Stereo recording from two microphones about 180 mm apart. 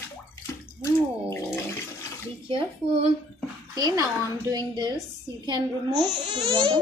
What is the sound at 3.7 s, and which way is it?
A woman's voice, 20° right (ahead or behind).